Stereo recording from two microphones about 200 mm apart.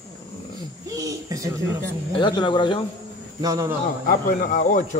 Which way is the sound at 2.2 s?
25° left (ahead or behind).